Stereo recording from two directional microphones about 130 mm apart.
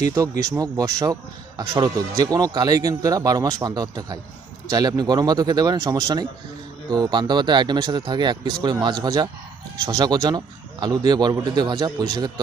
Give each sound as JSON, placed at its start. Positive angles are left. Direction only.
{"t": 0.4, "sound": "a man's voice", "side_deg": -25}